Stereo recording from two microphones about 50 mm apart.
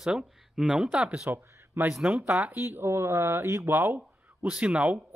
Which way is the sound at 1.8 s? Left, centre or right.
Right.